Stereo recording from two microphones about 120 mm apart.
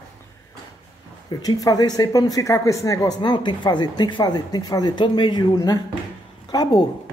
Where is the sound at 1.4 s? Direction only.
30° left (ahead or behind).